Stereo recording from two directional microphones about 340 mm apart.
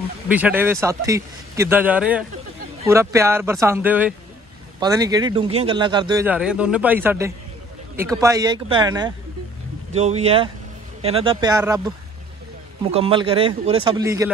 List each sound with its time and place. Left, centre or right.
0.3 s a man's voice: centre
12.9 s speech: centre